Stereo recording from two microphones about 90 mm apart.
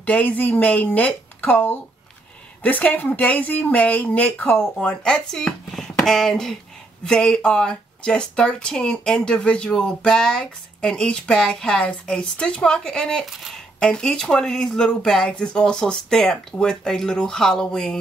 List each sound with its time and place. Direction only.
0.0 s speech: 15° left (ahead or behind)